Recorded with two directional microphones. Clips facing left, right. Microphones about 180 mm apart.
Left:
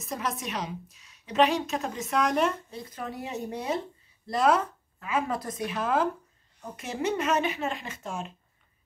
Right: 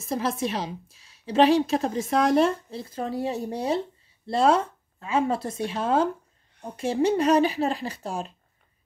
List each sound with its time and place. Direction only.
0.0 s a woman's voice: 30° right (ahead or behind)